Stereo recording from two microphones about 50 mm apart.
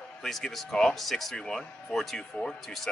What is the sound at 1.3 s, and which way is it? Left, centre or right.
A man's voice, centre.